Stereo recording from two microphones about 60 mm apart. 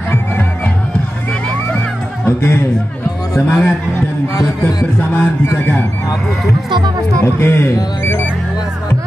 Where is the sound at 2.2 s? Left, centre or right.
Left.